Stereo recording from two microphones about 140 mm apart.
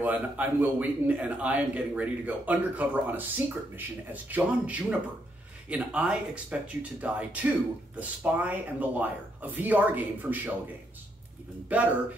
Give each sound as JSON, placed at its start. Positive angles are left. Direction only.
{"t": 0.0, "sound": "a man's voice", "side_deg": -10}
{"t": 11.7, "sound": "a man's voice", "side_deg": -10}